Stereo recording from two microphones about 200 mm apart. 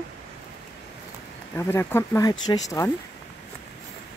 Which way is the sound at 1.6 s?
15° left (ahead or behind).